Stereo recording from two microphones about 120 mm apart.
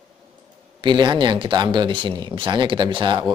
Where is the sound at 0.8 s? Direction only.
40° right (ahead or behind).